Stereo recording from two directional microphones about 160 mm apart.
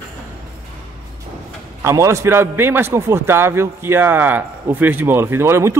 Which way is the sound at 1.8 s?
20° right (ahead or behind).